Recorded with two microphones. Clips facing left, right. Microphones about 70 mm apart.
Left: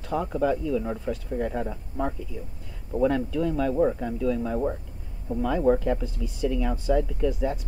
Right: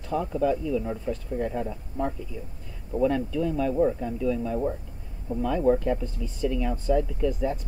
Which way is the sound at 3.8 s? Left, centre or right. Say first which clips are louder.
Even; left.